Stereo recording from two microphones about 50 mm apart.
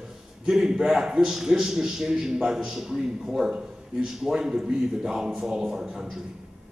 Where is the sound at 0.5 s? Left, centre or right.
Centre.